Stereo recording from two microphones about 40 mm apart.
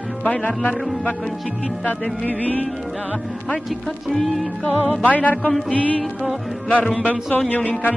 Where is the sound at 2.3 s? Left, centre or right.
Left.